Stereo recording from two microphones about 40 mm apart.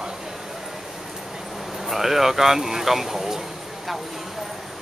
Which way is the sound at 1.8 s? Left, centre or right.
Centre.